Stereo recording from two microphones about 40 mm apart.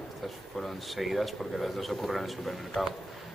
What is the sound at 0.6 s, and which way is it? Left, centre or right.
A man's voice, centre.